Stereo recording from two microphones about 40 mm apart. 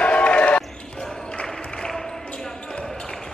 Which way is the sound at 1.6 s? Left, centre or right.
Left.